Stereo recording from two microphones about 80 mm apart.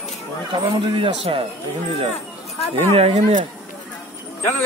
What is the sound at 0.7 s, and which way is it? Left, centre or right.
Speech, right.